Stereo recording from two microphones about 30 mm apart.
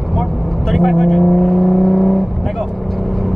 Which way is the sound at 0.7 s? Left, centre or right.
Centre.